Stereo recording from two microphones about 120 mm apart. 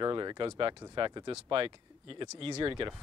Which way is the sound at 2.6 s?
35° right (ahead or behind).